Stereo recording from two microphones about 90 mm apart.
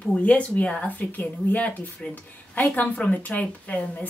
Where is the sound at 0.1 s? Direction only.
15° left (ahead or behind).